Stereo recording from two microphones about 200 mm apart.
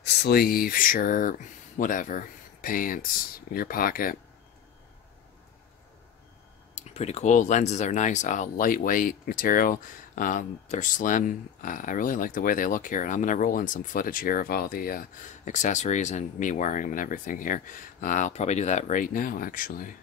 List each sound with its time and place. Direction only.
0.0 s speech: 50° left (ahead or behind)
6.7 s speech: 35° left (ahead or behind)